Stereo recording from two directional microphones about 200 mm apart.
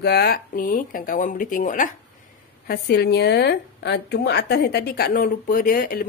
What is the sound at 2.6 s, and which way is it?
A woman's voice, 55° left (ahead or behind).